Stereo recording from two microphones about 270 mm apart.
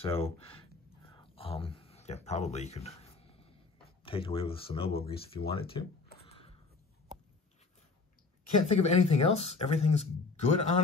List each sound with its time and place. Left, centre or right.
0.0 s speech: left
6.2 s a sound: left
8.6 s speech: left